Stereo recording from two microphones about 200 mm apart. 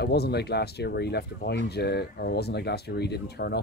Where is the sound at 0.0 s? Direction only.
55° left (ahead or behind).